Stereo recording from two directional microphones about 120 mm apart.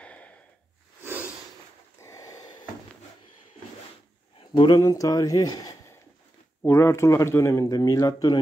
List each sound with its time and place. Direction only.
0.0 s snort: 10° left (ahead or behind)
1.0 s snort: 15° right (ahead or behind)
2.0 s snort: 25° left (ahead or behind)
4.4 s a sound: 45° left (ahead or behind)
4.7 s speech: 30° left (ahead or behind)